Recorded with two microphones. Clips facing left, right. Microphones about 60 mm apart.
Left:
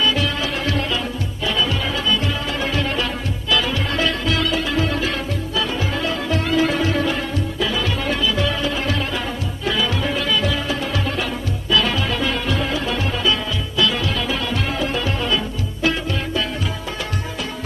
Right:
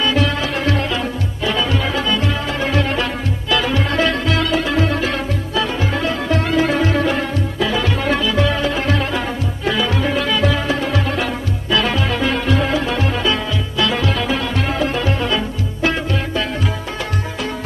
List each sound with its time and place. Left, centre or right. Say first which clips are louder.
0.0 s music: right 3 dB; right
11.7 s music: right 2 dB; right